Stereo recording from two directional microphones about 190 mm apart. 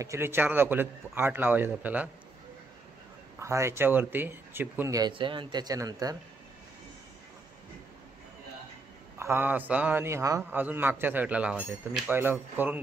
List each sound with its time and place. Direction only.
0.0 s a man's voice: 15° right (ahead or behind)
3.3 s a man's voice: 15° right (ahead or behind)
9.2 s a man's voice: 10° right (ahead or behind)